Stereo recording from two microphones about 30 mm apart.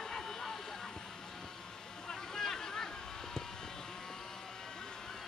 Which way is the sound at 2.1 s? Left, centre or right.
Centre.